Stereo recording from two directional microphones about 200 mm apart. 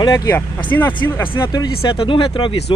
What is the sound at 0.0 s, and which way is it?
Speech, 15° left (ahead or behind).